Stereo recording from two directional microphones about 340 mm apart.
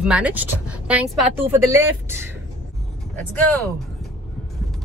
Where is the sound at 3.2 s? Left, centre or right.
Centre.